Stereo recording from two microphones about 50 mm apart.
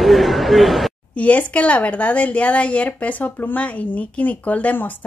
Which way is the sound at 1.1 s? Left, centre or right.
Left.